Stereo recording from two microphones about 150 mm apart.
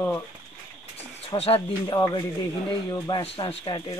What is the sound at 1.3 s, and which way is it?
Speech, 35° left (ahead or behind).